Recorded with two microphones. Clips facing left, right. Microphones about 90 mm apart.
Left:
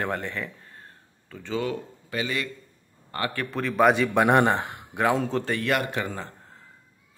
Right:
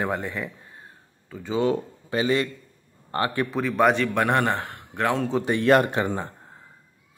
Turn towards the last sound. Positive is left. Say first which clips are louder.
# right 6 dB
turn(degrees=-25)  # may be behind; listen again after turning